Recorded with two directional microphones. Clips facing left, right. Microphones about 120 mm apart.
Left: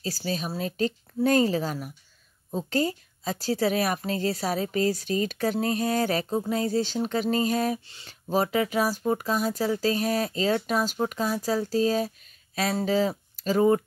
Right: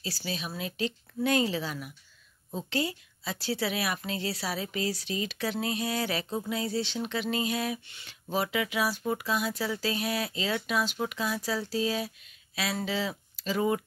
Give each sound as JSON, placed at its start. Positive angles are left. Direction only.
{"t": 0.0, "sound": "speech", "side_deg": 40}